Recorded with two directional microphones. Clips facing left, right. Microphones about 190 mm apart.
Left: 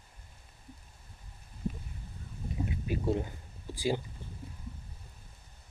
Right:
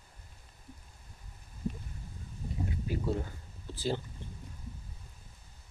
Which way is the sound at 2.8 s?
20° left (ahead or behind).